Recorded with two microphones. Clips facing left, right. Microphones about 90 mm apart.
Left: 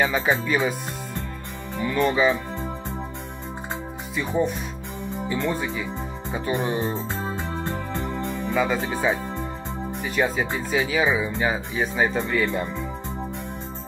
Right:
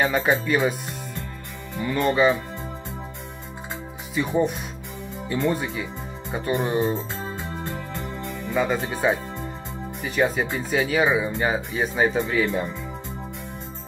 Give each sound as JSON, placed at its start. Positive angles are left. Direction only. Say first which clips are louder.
{"t": 0.0, "sound": "speech", "louder": "right 1 dB", "side_deg": 0}
{"t": 1.8, "sound": "speech", "louder": "right 1 dB", "side_deg": 0}
{"t": 4.1, "sound": "speech", "louder": "right 2 dB", "side_deg": 0}
{"t": 7.3, "sound": "music", "louder": "left 3 dB", "side_deg": 35}
{"t": 8.5, "sound": "speech", "louder": "right 1 dB", "side_deg": 0}